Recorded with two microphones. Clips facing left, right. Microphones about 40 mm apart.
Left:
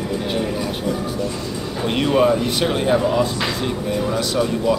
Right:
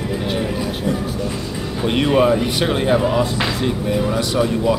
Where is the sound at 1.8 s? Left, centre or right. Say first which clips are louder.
Right 1 dB; centre.